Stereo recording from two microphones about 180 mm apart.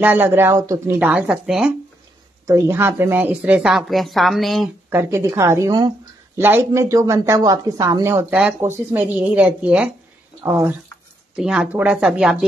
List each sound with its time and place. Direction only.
0.0 s speech: 10° right (ahead or behind)
2.4 s speech: 15° right (ahead or behind)
4.8 s speech: 10° right (ahead or behind)
11.3 s speech: 5° right (ahead or behind)